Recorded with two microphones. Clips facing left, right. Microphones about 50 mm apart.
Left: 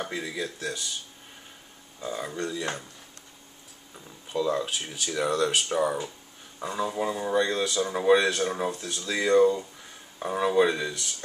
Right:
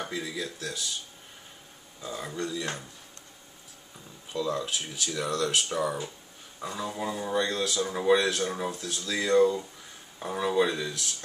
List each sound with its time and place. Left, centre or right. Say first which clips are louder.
0.1 s speech: left 2 dB; centre
2.0 s speech: left 2 dB; centre
3.9 s speech: left 4 dB; centre
5.5 s speech: left 2 dB; centre
5.8 s speech: left 3 dB; centre